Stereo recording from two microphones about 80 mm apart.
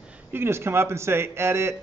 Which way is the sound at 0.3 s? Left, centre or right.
Right.